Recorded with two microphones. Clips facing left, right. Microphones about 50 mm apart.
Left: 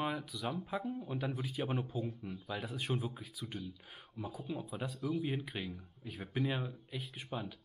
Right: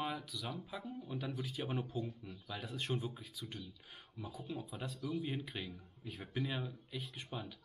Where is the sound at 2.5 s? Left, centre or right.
Centre.